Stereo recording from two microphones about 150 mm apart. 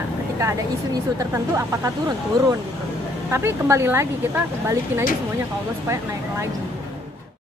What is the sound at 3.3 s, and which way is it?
Speech, 15° right (ahead or behind).